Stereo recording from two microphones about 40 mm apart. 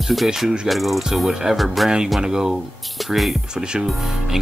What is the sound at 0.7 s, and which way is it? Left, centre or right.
Speech, centre.